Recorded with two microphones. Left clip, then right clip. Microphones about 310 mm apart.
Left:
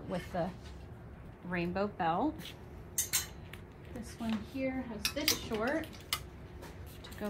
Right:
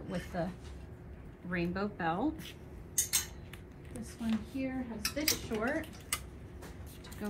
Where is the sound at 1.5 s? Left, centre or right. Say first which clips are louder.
Left 1 dB; centre.